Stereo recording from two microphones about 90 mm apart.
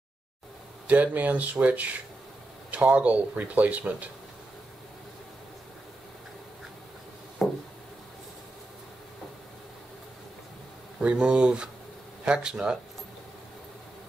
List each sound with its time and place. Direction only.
0.8 s speech: 20° right (ahead or behind)
7.4 s a sound: centre (ahead or behind)
11.0 s speech: 10° right (ahead or behind)